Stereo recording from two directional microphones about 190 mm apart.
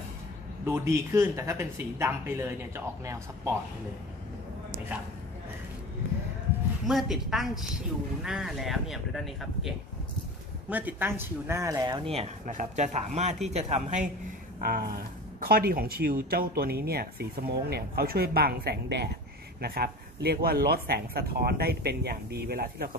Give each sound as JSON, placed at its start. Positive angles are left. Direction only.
{"t": 0.7, "sound": "speech", "side_deg": -15}
{"t": 6.9, "sound": "a woman's voice", "side_deg": 0}
{"t": 12.1, "sound": "speech", "side_deg": -35}
{"t": 14.6, "sound": "speech", "side_deg": -50}